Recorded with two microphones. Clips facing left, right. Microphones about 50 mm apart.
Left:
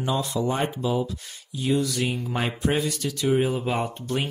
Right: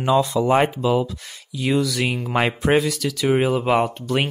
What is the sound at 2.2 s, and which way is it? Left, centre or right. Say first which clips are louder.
Speech: right 6 dB; right.